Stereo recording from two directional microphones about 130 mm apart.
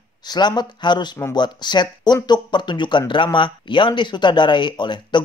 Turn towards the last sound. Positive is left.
turn(degrees=35)  # may be behind; listen again after turning